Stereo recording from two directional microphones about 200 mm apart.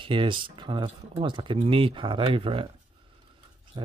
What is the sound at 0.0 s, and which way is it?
Speech, 25° right (ahead or behind).